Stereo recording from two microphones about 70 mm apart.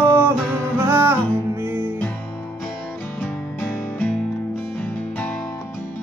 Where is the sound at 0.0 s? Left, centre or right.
Right.